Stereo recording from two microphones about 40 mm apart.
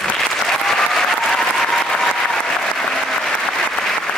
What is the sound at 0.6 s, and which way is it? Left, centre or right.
Applause, centre.